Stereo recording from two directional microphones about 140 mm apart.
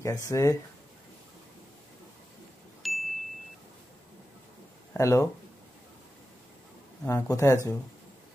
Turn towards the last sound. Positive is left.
turn(degrees=20)  # may be behind; listen again after turning